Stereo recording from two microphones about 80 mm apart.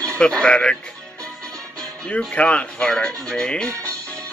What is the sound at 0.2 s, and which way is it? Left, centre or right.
Speech, centre.